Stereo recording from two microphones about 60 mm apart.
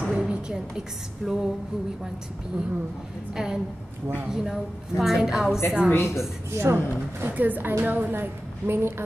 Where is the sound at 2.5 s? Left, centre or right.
Centre.